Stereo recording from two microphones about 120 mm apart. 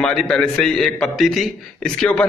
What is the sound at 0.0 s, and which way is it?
A man's voice, 5° left (ahead or behind).